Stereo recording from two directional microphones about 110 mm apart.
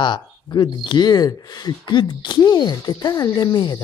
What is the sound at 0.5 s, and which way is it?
Speech, 40° left (ahead or behind).